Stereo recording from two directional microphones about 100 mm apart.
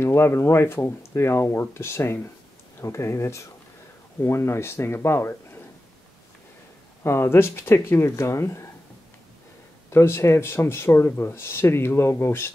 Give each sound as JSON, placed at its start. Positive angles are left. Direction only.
{"t": 0.0, "sound": "speech", "side_deg": 25}
{"t": 7.0, "sound": "speech", "side_deg": 25}
{"t": 9.8, "sound": "speech", "side_deg": 25}